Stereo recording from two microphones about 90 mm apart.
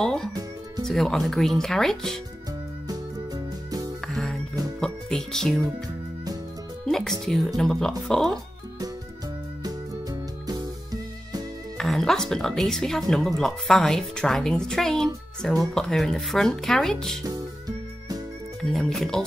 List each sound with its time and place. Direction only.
0.0 s speech: 5° left (ahead or behind)
0.3 s music: 45° right (ahead or behind)
0.8 s a woman's voice: 5° left (ahead or behind)
2.9 s music: 45° right (ahead or behind)
4.1 s music: 5° left (ahead or behind)
6.9 s a woman's voice: 5° left (ahead or behind)
9.6 s music: 45° right (ahead or behind)
11.8 s a woman's voice: 5° left (ahead or behind)
17.2 s music: 45° right (ahead or behind)
18.6 s a woman's voice: 5° left (ahead or behind)